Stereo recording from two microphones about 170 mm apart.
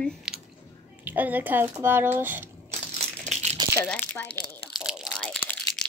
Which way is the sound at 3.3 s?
40° right (ahead or behind).